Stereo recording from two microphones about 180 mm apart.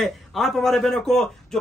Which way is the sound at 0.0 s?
Centre (ahead or behind).